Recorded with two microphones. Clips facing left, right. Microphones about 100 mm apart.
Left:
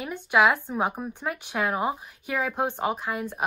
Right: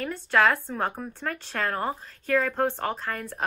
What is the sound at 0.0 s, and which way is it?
Speech, 15° left (ahead or behind).